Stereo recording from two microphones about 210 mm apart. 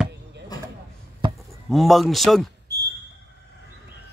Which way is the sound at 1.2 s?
25° right (ahead or behind).